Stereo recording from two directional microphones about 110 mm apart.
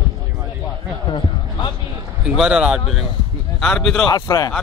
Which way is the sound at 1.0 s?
45° left (ahead or behind).